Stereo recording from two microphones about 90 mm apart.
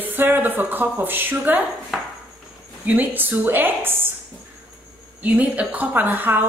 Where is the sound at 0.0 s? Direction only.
20° right (ahead or behind).